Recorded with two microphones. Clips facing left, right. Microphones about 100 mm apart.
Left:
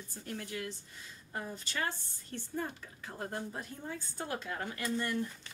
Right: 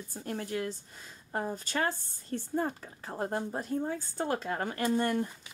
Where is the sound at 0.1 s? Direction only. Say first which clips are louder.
Right 6 dB; 40° right (ahead or behind).